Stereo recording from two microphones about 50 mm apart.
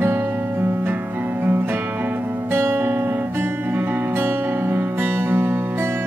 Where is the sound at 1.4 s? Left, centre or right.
Right.